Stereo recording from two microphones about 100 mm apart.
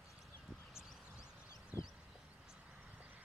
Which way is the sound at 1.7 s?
25° right (ahead or behind).